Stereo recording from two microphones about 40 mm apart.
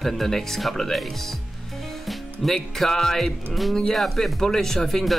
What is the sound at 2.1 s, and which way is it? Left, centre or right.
Speech, centre.